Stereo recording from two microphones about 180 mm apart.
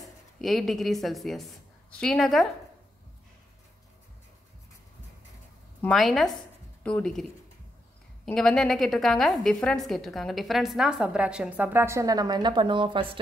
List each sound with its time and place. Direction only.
0.4 s a woman's voice: centre (ahead or behind)
5.8 s a woman's voice: 5° left (ahead or behind)
8.3 s a woman's voice: 5° left (ahead or behind); by 13.2 s 25° right (ahead or behind)